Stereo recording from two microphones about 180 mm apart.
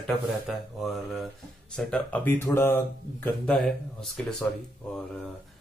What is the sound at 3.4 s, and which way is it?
Speech, centre (ahead or behind).